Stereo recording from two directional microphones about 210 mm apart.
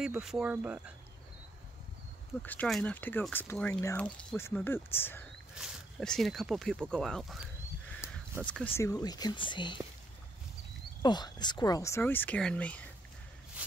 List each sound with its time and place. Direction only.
0.0 s speech: centre (ahead or behind)
2.4 s speech: 5° left (ahead or behind)
5.5 s speech: centre (ahead or behind); by 9.8 s 20° left (ahead or behind)
11.0 s speech: 20° left (ahead or behind)
13.6 s a sound: 5° right (ahead or behind)